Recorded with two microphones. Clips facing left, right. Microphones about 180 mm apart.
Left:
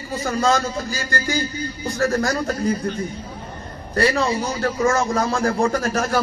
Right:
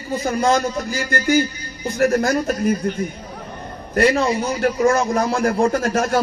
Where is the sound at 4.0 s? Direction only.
20° right (ahead or behind).